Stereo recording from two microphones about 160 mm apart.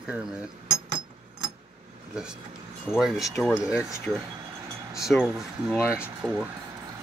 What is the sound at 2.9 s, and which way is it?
Speech, centre (ahead or behind).